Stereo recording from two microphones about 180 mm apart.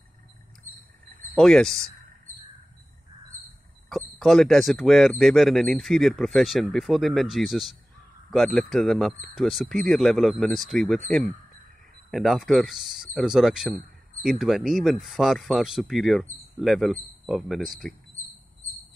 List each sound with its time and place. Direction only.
0.7 s vehicle: 45° right (ahead or behind)
1.3 s speech: 5° left (ahead or behind)
3.9 s speech: centre (ahead or behind)